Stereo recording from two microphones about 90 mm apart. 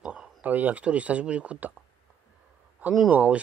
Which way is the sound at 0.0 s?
10° right (ahead or behind).